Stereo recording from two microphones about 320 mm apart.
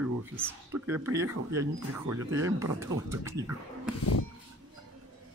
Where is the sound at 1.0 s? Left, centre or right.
Centre.